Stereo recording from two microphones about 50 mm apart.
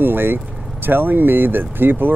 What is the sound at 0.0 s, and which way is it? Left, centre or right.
Vehicle, right.